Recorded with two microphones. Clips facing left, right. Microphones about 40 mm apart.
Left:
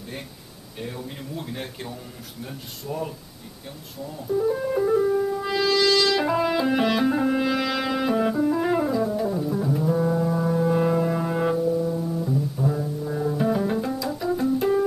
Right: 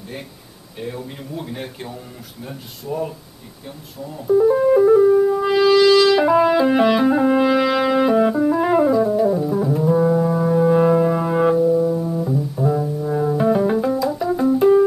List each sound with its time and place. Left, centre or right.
0.7 s speech: centre
4.3 s music: centre